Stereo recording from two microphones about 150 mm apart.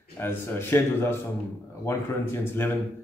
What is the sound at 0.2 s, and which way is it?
A man's voice, 15° left (ahead or behind).